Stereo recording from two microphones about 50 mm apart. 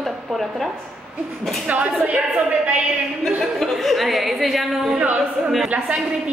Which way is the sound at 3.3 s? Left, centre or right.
Centre.